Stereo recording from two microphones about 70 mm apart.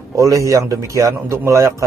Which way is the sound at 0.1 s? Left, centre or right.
Right.